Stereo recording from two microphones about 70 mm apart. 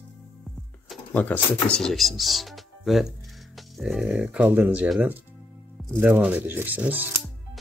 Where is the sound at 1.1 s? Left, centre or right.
Left.